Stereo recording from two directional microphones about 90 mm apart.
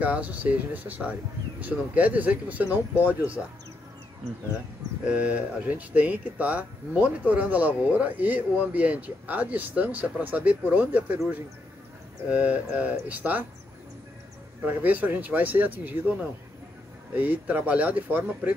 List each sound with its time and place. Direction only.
0.0 s speech: 15° right (ahead or behind)
5.0 s speech: 15° right (ahead or behind)
12.3 s speech: 15° right (ahead or behind)
14.6 s speech: 20° right (ahead or behind)